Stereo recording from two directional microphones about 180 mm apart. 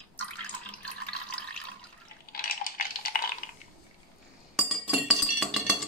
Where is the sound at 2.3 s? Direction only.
55° left (ahead or behind).